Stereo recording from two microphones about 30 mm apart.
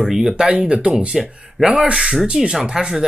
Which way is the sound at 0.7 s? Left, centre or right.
Right.